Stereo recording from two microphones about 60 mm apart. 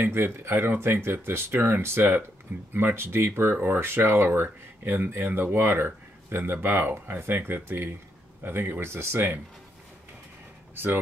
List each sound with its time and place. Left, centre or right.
0.0 s speech: right